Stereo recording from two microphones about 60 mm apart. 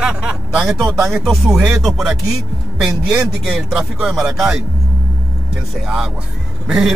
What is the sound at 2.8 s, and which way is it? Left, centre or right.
Speech, centre.